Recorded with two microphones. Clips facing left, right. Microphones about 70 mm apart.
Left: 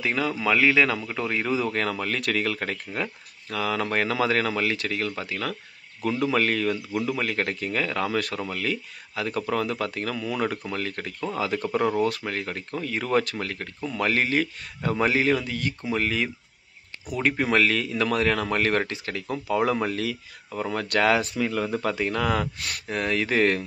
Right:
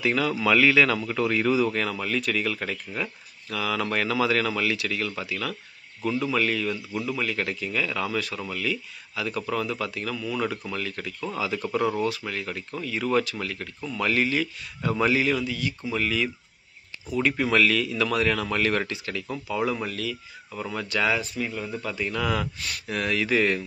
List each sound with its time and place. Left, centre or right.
0.0 s speech: left
19.4 s speech: left